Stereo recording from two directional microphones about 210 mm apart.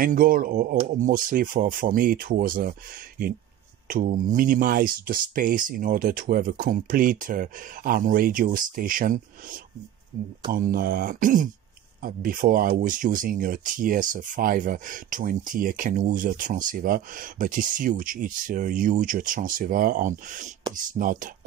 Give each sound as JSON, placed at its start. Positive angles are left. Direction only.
{"t": 0.0, "sound": "speech", "side_deg": -40}
{"t": 3.8, "sound": "speech", "side_deg": -40}